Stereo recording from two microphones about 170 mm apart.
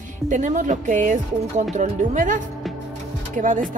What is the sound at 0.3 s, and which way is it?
Speech, 45° right (ahead or behind).